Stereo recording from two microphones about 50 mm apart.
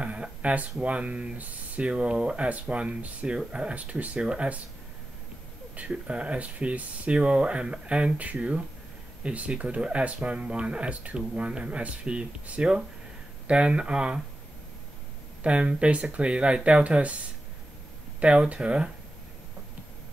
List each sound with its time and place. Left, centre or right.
0.0 s speech: right
5.8 s speech: right
15.4 s speech: right
18.2 s speech: right